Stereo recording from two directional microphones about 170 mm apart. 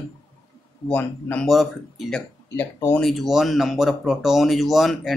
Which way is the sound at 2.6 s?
15° left (ahead or behind).